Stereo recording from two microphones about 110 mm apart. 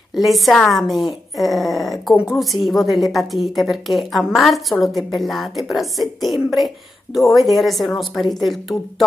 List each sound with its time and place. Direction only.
0.1 s a woman's voice: centre (ahead or behind)